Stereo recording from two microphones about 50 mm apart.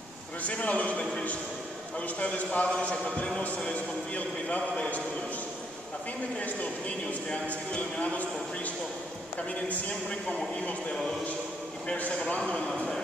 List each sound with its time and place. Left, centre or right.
0.4 s a man's voice: left
6.4 s a man's voice: left
10.6 s a man's voice: left